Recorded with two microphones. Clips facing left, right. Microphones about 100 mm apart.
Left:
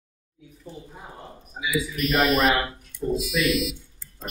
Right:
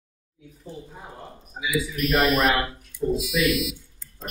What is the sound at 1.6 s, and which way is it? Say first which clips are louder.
Speech: even; centre (ahead or behind).